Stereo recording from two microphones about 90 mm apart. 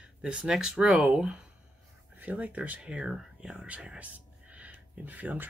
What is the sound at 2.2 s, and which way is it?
Speech, 15° right (ahead or behind).